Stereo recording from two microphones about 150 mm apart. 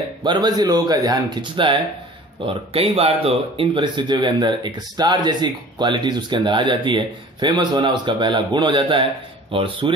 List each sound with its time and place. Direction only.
0.2 s speech: 30° right (ahead or behind)